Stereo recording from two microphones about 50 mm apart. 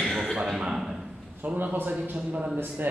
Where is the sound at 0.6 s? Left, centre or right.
Centre.